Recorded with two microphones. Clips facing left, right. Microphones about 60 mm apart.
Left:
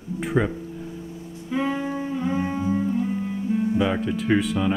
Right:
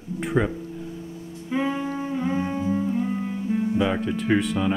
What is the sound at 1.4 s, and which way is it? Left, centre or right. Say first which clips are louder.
Music: even; centre.